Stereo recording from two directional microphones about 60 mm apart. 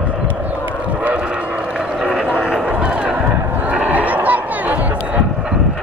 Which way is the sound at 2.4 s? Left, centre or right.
Centre.